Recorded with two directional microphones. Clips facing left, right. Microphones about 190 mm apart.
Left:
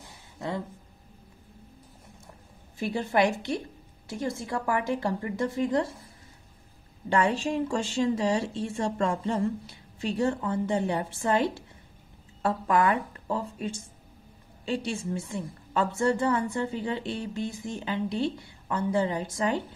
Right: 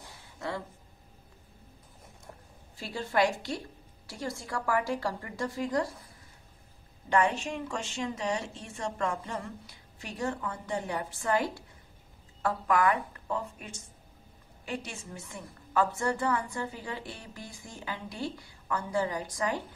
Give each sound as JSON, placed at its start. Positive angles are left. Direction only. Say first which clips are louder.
{"t": 0.4, "sound": "a sound", "louder": "left 3 dB", "side_deg": 20}
{"t": 2.8, "sound": "a woman's voice", "louder": "left 3 dB", "side_deg": 20}
{"t": 7.1, "sound": "a woman's voice", "louder": "left 2 dB", "side_deg": 30}